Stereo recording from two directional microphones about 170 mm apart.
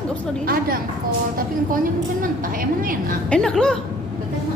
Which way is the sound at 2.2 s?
55° right (ahead or behind).